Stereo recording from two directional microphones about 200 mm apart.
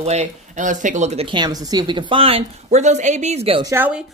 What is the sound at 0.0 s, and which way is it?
Speech, 35° right (ahead or behind).